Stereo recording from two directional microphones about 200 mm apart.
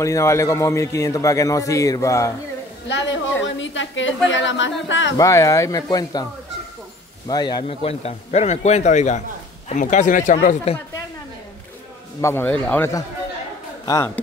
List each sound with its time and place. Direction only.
0.0 s a man's voice: 15° left (ahead or behind)
2.9 s a woman's voice: 65° left (ahead or behind)
5.1 s a man's voice: 15° left (ahead or behind)
7.2 s speech: 20° left (ahead or behind)
7.6 s speech: 30° left (ahead or behind)
12.2 s a man's voice: 10° left (ahead or behind)